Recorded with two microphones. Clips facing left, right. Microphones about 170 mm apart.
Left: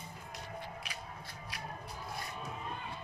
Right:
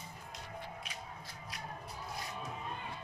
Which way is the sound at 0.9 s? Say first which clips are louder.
Left 1 dB; 75° left (ahead or behind).